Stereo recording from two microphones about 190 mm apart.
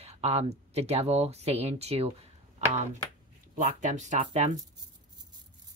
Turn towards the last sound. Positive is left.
turn(degrees=-40)  # may be behind; listen again after turning